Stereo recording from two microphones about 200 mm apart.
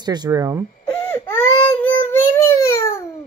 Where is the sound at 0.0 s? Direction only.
20° right (ahead or behind).